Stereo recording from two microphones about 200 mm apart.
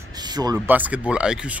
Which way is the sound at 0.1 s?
20° right (ahead or behind).